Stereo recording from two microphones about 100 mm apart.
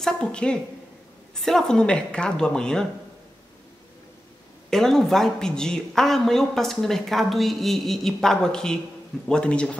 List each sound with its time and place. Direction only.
0.0 s speech: 10° left (ahead or behind)
4.6 s a woman's voice: 5° left (ahead or behind)